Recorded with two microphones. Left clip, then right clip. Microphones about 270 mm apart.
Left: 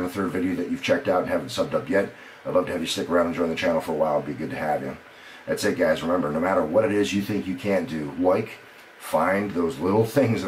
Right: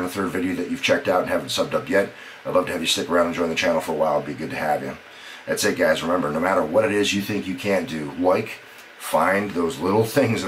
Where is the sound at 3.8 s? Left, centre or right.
Centre.